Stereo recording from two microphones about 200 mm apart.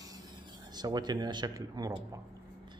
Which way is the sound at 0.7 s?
20° right (ahead or behind).